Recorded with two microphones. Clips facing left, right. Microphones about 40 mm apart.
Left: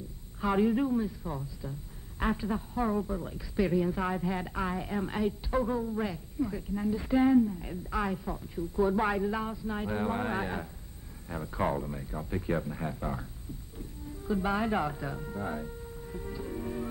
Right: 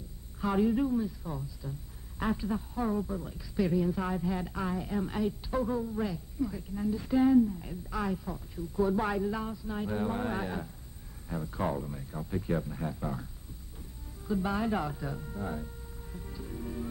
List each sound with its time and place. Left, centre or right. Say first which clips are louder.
0.4 s a man's voice: left 1 dB; centre